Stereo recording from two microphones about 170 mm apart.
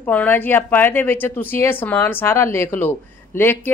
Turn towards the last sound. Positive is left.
turn(degrees=15)  # may be behind; listen again after turning